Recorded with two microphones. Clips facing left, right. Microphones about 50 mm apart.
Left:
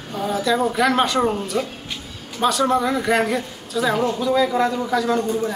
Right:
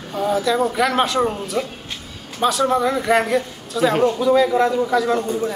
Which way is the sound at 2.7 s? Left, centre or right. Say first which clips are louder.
Right 2 dB; centre.